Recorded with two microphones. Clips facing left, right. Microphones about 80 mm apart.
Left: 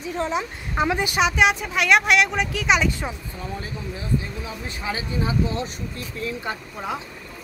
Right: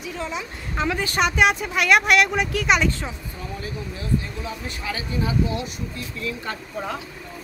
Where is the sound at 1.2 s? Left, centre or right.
Centre.